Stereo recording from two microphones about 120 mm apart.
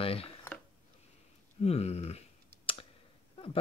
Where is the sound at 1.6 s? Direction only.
60° left (ahead or behind).